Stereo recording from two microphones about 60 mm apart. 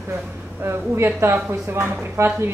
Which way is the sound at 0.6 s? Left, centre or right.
Right.